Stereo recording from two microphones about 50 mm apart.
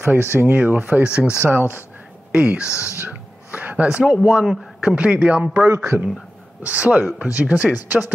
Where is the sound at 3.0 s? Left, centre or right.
Right.